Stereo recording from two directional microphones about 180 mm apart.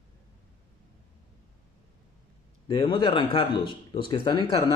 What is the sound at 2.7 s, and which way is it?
Speech, 25° left (ahead or behind).